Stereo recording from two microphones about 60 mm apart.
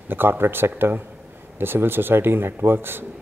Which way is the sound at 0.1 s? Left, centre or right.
Right.